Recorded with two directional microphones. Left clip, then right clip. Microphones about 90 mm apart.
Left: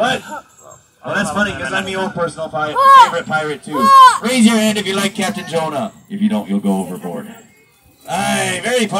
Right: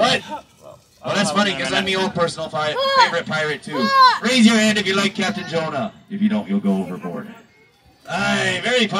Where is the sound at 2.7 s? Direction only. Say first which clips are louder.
Left 9 dB; 40° left (ahead or behind).